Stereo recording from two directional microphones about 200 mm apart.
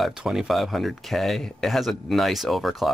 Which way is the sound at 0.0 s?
5° right (ahead or behind).